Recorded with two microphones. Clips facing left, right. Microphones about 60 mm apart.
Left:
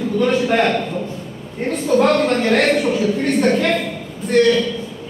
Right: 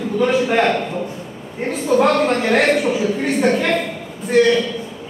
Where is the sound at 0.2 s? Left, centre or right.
Centre.